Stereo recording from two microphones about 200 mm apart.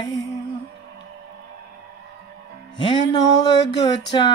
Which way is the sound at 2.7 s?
25° left (ahead or behind).